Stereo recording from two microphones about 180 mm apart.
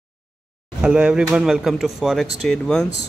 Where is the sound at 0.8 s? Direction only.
5° right (ahead or behind).